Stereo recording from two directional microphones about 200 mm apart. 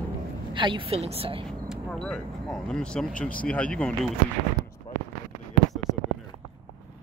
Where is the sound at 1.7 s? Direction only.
Centre (ahead or behind).